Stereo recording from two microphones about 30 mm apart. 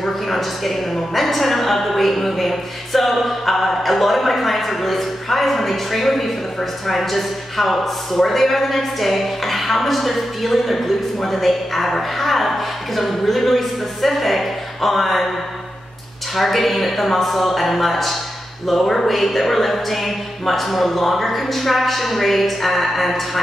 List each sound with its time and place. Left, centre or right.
0.0 s speech: centre
16.3 s speech: centre